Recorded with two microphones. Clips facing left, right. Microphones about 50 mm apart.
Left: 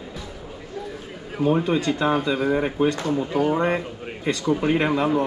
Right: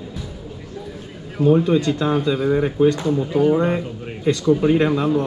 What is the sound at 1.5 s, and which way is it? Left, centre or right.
A man's voice, left.